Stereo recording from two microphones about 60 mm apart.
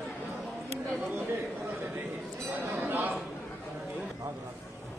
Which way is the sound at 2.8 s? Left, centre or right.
Right.